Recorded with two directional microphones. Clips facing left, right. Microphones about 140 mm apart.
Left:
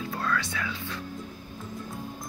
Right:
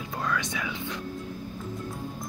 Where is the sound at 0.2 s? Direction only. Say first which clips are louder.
Right 1 dB; 15° right (ahead or behind).